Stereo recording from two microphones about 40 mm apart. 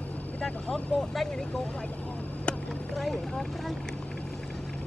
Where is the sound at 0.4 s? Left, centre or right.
Left.